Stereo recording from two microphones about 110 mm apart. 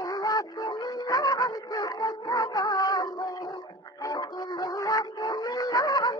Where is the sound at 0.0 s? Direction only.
35° left (ahead or behind).